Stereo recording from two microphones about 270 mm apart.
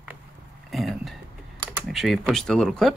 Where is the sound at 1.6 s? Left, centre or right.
Centre.